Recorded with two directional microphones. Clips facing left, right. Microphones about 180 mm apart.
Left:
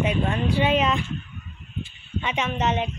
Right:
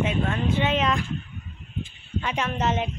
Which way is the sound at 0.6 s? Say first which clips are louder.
Left 3 dB; 10° left (ahead or behind).